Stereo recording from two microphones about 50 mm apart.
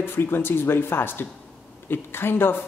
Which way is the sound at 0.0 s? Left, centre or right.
Left.